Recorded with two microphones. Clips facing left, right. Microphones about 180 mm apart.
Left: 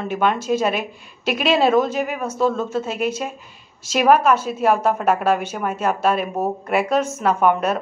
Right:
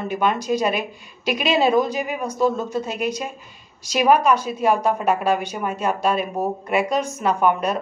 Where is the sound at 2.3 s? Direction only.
15° right (ahead or behind).